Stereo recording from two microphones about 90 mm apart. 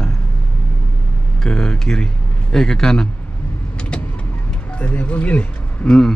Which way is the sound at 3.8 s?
10° left (ahead or behind).